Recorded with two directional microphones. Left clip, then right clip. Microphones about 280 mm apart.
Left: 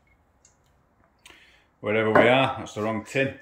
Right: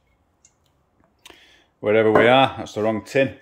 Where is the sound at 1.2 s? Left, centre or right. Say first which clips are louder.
Right 4 dB; centre.